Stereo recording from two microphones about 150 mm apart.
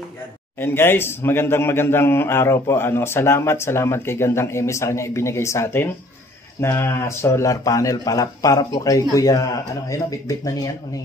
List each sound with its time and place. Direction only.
0.6 s a man's voice: 15° left (ahead or behind)